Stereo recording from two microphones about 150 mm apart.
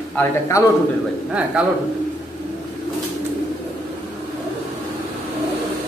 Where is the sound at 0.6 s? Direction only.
20° left (ahead or behind).